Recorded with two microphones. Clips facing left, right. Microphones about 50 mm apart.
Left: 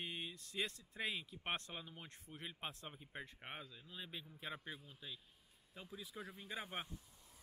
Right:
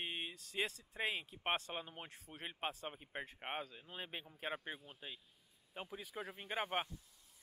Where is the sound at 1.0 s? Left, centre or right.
Centre; by 6.9 s right.